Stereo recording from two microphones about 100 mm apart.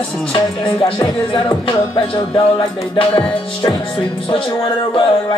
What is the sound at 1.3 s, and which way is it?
Music, 60° left (ahead or behind).